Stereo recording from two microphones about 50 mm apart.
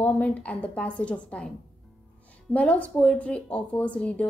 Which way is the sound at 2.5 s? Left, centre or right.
Left.